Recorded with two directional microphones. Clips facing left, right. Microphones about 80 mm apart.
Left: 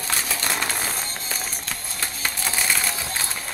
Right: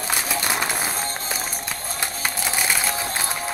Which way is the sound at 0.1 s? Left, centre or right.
Centre.